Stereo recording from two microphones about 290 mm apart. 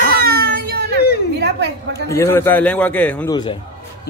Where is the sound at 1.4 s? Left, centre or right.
Right.